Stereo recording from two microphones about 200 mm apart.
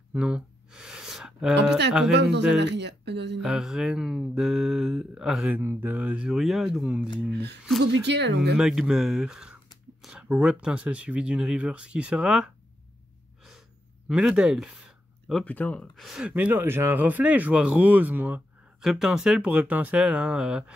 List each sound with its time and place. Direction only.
0.1 s a sound: 5° right (ahead or behind)
2.3 s speech: 60° right (ahead or behind)
3.4 s speech: 5° right (ahead or behind)
7.2 s speech: 55° right (ahead or behind)
8.5 s speech: 5° right (ahead or behind)
14.0 s speech: 5° right (ahead or behind)